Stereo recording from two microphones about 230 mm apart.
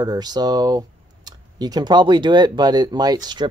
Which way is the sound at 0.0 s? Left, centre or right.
Centre.